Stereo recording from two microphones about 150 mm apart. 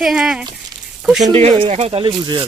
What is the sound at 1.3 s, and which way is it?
Speech, 40° right (ahead or behind).